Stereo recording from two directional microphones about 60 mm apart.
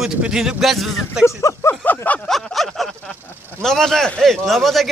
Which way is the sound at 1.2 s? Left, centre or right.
Left.